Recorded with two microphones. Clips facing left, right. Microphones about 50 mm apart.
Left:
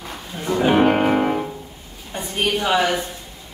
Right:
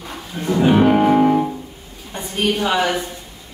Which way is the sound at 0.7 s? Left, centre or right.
Left.